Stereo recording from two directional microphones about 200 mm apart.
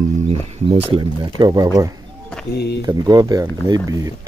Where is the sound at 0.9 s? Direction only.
20° right (ahead or behind).